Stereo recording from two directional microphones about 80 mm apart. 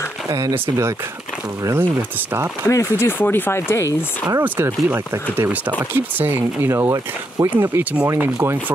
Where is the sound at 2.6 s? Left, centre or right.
Left.